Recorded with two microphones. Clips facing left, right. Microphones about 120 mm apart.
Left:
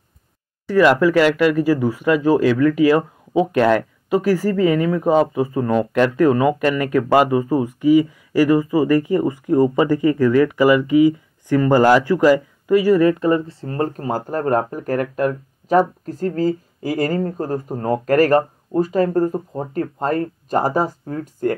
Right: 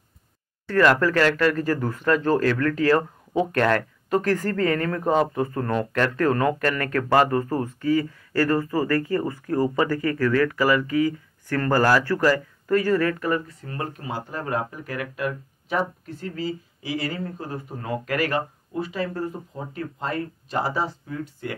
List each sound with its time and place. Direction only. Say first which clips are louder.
0.7 s speech: left 5 dB; 10° left (ahead or behind); by 21.5 s 45° left (ahead or behind)